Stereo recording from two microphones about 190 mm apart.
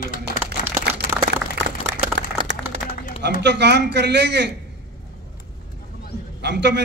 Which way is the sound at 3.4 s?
65° right (ahead or behind).